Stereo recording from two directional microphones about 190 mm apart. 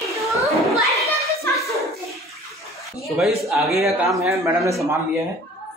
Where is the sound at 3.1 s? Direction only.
Centre (ahead or behind).